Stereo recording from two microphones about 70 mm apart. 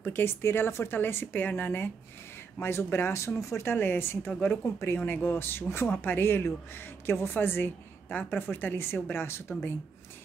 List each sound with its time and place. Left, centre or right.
0.0 s speech: left